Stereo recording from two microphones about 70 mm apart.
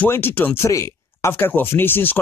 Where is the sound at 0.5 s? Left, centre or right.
Left.